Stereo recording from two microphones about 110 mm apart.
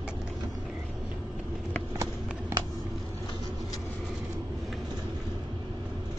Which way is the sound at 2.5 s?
20° right (ahead or behind).